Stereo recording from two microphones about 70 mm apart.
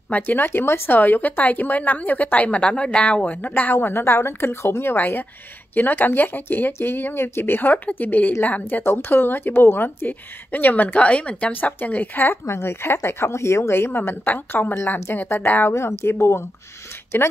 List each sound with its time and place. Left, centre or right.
0.1 s a woman's voice: left